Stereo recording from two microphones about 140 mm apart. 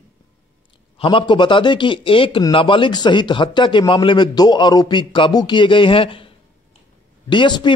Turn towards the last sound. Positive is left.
turn(degrees=35)  # may be behind; listen again after turning